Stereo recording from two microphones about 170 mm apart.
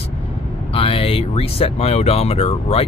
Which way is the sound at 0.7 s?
35° left (ahead or behind).